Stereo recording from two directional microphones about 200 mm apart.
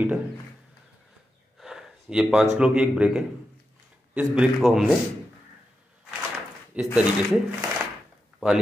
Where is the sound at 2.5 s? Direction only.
5° right (ahead or behind).